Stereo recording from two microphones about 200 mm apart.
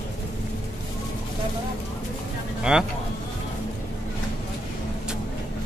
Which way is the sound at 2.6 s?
5° right (ahead or behind).